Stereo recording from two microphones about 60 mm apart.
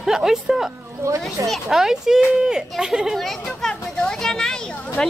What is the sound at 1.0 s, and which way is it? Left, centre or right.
Speech, right.